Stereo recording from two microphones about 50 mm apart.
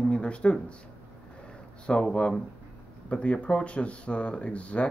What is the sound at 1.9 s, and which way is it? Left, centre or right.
Speech, centre.